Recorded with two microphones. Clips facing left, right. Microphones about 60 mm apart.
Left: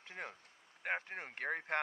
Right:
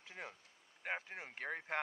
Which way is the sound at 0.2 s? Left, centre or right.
Left.